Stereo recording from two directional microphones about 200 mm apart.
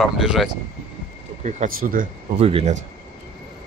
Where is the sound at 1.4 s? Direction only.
40° right (ahead or behind).